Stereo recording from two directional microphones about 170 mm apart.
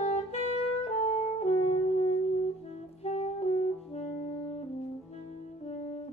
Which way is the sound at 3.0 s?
40° left (ahead or behind).